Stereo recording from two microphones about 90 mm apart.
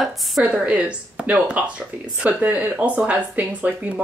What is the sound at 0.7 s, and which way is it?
Speech, 15° right (ahead or behind).